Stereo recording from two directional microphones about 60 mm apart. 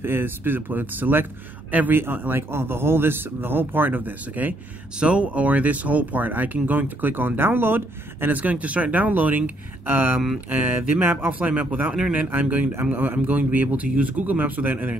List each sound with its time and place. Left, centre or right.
0.0 s speech: right
11.2 s speech: right